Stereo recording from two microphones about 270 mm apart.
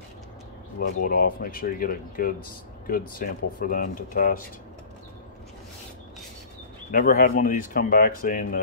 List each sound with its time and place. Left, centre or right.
0.7 s speech: left
6.9 s speech: left